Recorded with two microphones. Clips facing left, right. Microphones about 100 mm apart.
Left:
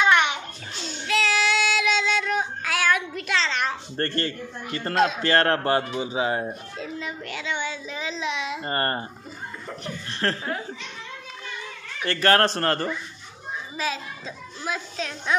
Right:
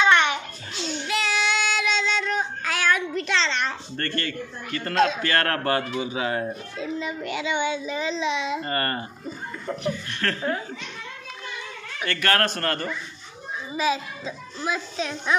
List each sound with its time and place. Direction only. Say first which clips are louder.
0.0 s babbling: right 1 dB; 10° left (ahead or behind)
1.0 s child singing: left 3 dB; centre (ahead or behind)
3.9 s speech: left 2 dB; 30° left (ahead or behind)
4.9 s a child's voice: right 1 dB; 5° left (ahead or behind)
5.2 s speech: left 3 dB; 25° left (ahead or behind)
6.8 s a child's voice: right 5 dB; centre (ahead or behind)
8.6 s speech: left 1 dB; 30° left (ahead or behind)
10.0 s a man's voice: left 1 dB; 30° left (ahead or behind)
12.1 s a man's voice: left 4 dB; 30° left (ahead or behind)
13.7 s a child's voice: right 6 dB; 5° right (ahead or behind)